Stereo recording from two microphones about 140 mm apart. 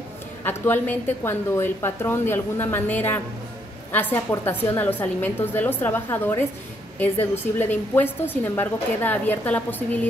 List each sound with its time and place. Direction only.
0.4 s a woman's voice: 15° left (ahead or behind)